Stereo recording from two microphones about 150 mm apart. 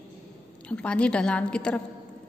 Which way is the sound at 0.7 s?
10° left (ahead or behind).